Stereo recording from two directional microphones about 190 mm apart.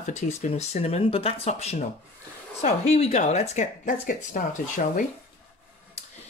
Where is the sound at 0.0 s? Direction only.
40° left (ahead or behind).